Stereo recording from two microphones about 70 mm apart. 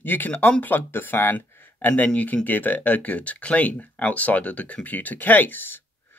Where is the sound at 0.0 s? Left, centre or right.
Left.